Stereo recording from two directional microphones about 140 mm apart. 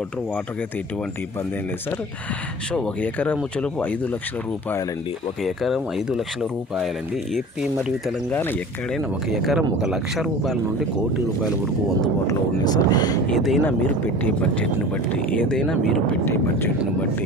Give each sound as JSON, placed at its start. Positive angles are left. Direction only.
{"t": 2.7, "sound": "speech", "side_deg": 10}
{"t": 5.4, "sound": "speech", "side_deg": 0}
{"t": 8.3, "sound": "speech", "side_deg": 15}
{"t": 8.9, "sound": "speech", "side_deg": 0}
{"t": 12.3, "sound": "speech", "side_deg": 30}
{"t": 13.3, "sound": "speech", "side_deg": 0}
{"t": 13.7, "sound": "speech", "side_deg": 15}
{"t": 16.3, "sound": "speech", "side_deg": 15}